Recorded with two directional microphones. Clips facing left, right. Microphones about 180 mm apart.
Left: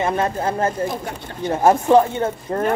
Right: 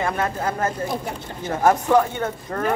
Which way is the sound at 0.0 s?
25° left (ahead or behind).